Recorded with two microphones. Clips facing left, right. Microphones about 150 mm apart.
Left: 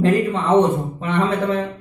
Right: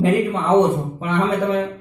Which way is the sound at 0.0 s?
10° right (ahead or behind).